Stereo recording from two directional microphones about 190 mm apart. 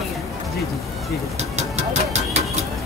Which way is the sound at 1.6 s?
35° right (ahead or behind).